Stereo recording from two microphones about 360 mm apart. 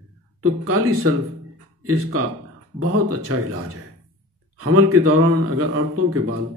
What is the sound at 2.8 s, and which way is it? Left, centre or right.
Speech, right.